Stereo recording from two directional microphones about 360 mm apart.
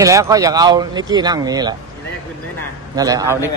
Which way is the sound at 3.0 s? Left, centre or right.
Centre.